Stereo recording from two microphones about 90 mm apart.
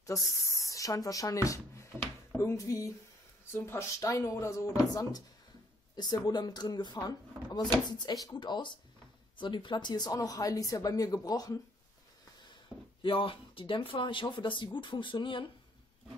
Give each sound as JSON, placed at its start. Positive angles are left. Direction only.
{"t": 0.0, "sound": "speech", "side_deg": 35}
{"t": 12.7, "sound": "a sound", "side_deg": 0}
{"t": 13.0, "sound": "speech", "side_deg": 70}